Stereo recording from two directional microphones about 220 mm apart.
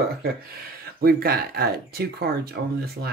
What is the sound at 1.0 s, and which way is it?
Speech, 45° right (ahead or behind).